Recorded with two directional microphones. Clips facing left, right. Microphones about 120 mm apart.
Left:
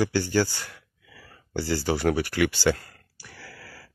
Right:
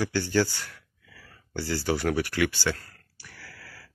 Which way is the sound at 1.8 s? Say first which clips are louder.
Left 1 dB; 5° left (ahead or behind).